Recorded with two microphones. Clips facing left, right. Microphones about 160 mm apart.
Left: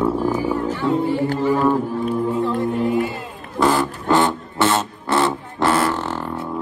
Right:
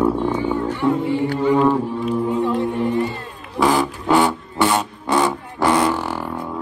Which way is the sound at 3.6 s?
15° right (ahead or behind).